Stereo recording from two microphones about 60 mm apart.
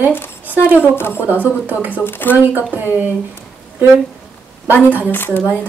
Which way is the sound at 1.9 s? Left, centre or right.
Left.